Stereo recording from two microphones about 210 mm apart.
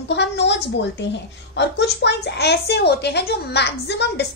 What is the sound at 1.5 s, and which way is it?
A woman's voice, 55° left (ahead or behind).